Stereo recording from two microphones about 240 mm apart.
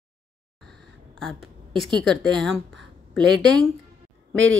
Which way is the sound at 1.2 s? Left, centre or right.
Centre.